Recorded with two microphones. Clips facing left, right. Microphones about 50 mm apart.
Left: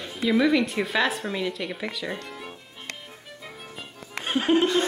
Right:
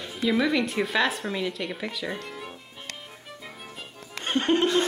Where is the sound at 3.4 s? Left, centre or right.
Centre.